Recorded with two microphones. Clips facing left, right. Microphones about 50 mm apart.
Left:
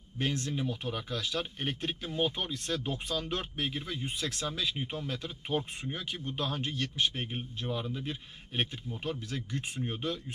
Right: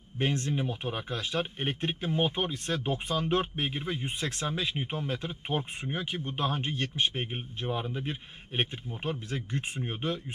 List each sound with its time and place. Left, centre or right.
0.2 s speech: right